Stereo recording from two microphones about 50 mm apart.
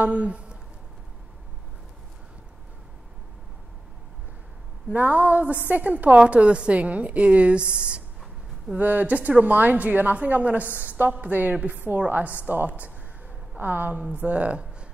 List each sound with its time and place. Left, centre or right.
0.0 s speech: right
4.9 s a woman's voice: right
8.7 s a woman's voice: right